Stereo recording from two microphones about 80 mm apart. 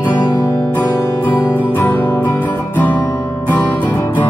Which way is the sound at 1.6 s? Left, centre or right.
Left.